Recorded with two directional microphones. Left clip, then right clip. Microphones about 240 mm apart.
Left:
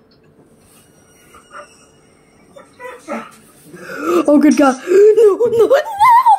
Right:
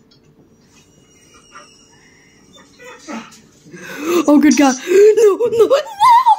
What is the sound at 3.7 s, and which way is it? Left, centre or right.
Whimper, centre.